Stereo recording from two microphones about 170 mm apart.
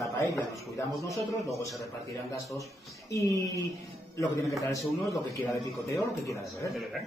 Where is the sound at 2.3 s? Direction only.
20° left (ahead or behind).